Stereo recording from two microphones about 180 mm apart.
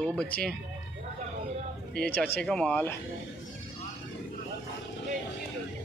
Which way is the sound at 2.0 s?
5° left (ahead or behind).